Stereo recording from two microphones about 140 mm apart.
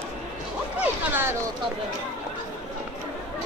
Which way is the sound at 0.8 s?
15° right (ahead or behind).